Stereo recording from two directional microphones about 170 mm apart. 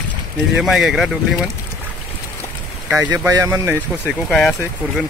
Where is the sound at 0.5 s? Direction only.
Centre (ahead or behind).